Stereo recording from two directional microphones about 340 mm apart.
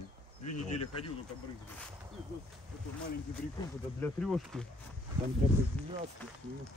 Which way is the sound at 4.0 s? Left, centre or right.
Centre.